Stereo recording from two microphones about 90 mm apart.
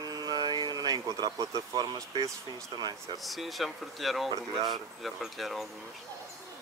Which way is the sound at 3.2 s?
Centre (ahead or behind).